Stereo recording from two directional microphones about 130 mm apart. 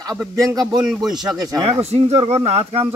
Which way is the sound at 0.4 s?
25° right (ahead or behind).